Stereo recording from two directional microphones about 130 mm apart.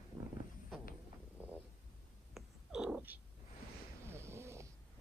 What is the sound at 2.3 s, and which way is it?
Cat, 5° right (ahead or behind).